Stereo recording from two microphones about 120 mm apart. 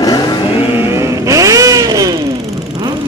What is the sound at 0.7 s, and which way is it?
Vehicle, 20° right (ahead or behind).